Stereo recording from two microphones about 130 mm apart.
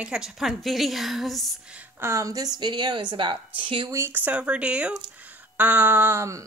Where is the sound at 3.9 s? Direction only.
15° right (ahead or behind).